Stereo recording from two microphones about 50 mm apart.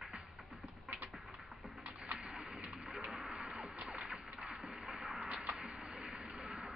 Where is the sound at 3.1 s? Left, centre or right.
Centre.